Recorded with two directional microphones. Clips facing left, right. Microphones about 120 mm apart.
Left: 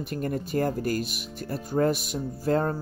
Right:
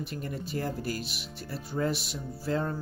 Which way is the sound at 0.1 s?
50° left (ahead or behind).